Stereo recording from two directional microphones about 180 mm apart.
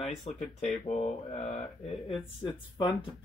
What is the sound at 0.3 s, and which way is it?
Speech, 35° left (ahead or behind).